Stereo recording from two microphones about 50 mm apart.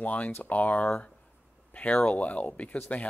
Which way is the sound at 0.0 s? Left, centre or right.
Left.